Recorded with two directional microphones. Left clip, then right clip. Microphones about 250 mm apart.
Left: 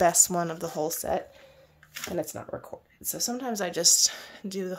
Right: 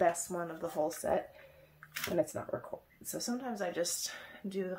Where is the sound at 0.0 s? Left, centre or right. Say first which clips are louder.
Left 8 dB; left.